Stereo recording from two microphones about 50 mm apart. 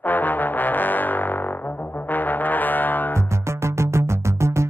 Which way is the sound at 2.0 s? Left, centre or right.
Left.